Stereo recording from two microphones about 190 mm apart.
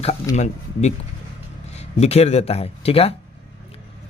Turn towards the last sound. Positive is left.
turn(degrees=30)  # may be behind; listen again after turning